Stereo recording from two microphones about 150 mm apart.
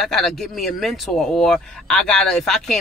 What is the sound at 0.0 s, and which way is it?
A man's voice, centre (ahead or behind).